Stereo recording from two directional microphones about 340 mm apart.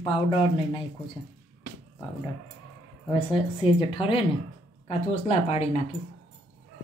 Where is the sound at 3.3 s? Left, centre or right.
Centre.